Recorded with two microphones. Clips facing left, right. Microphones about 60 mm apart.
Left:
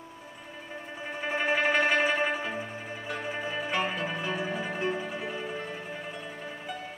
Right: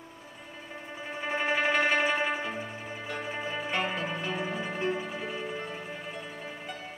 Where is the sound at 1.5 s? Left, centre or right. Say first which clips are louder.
Left 1 dB; left.